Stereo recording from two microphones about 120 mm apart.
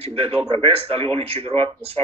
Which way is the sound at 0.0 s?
55° right (ahead or behind).